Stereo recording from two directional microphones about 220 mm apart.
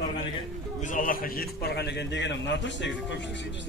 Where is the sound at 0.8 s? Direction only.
35° left (ahead or behind); by 3.2 s 55° left (ahead or behind).